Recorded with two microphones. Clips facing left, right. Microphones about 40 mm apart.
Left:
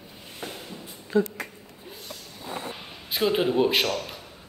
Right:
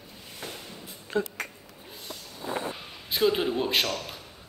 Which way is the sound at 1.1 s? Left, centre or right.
Right.